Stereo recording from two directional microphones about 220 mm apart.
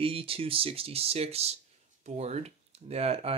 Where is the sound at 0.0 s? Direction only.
25° right (ahead or behind).